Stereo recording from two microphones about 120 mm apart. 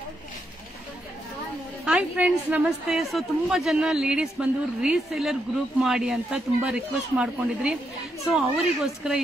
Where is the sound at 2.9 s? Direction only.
Centre (ahead or behind).